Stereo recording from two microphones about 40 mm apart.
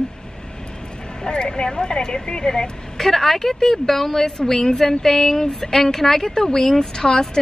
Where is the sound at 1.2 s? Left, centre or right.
Centre.